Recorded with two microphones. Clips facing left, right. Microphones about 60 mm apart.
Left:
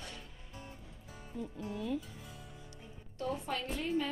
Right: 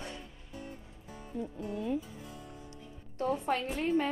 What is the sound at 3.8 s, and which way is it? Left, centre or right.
Speech, right.